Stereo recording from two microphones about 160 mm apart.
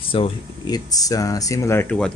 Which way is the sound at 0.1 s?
30° left (ahead or behind).